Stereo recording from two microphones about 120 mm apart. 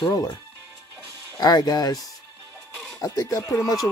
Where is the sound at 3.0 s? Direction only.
30° left (ahead or behind).